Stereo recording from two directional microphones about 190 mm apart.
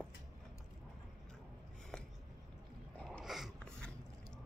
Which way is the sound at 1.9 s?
5° left (ahead or behind).